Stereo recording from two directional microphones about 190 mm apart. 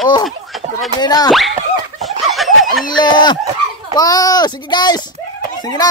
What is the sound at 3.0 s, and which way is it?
Fowl, 25° left (ahead or behind).